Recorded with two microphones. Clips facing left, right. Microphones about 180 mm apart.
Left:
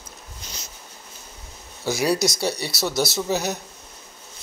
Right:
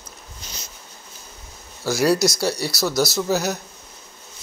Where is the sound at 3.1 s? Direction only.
5° right (ahead or behind).